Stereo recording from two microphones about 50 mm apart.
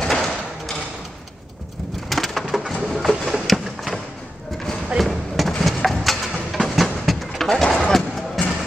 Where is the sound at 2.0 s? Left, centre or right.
Centre.